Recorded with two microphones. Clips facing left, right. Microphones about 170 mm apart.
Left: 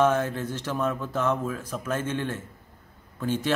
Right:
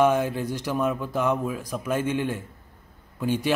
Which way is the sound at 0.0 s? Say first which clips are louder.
Right 2 dB; 15° right (ahead or behind).